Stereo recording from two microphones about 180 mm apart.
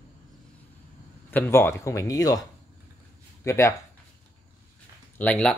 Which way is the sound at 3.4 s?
15° left (ahead or behind).